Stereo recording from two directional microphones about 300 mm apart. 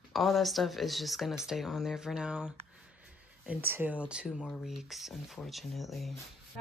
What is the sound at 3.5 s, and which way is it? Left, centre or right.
Speech, centre.